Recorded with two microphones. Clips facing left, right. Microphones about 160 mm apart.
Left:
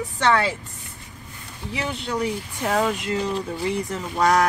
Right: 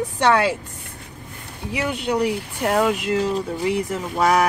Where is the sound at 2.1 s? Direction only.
70° right (ahead or behind).